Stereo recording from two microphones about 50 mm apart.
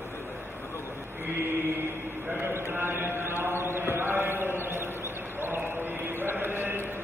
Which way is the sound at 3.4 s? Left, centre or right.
Right.